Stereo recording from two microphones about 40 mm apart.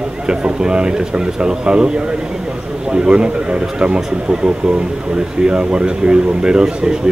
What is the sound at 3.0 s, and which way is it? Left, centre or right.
Speech, right.